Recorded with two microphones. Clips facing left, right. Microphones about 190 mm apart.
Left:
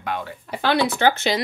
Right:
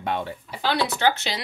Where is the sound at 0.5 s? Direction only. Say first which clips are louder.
Left 4 dB; 55° left (ahead or behind).